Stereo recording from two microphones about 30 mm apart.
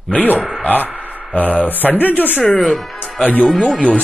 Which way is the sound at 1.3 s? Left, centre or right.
Left.